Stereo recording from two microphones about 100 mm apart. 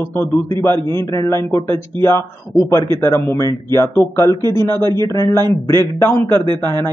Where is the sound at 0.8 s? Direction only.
45° right (ahead or behind).